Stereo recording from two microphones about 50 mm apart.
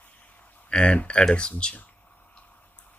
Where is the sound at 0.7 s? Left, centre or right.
Left.